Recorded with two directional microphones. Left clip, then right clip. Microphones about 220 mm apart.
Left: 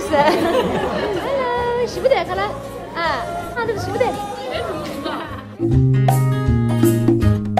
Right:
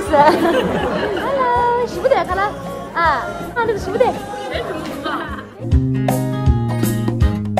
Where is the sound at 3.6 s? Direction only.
25° right (ahead or behind).